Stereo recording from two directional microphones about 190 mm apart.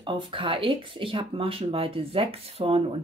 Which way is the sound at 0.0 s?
25° right (ahead or behind).